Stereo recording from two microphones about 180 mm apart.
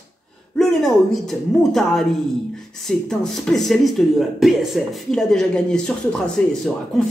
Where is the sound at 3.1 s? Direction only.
Centre (ahead or behind).